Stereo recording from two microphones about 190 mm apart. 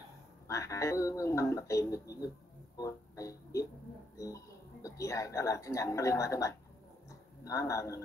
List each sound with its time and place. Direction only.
0.5 s speech: 15° left (ahead or behind)
2.8 s music: 15° left (ahead or behind)
4.8 s speech: 15° left (ahead or behind)